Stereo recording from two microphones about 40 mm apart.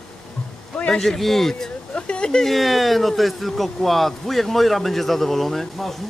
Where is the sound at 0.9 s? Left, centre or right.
Centre.